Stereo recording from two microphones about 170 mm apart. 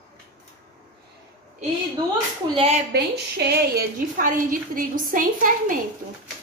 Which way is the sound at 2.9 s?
70° right (ahead or behind).